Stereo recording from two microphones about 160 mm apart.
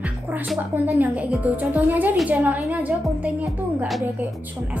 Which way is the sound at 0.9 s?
10° right (ahead or behind).